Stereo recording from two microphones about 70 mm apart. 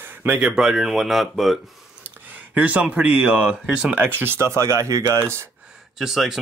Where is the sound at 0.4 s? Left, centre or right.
Centre.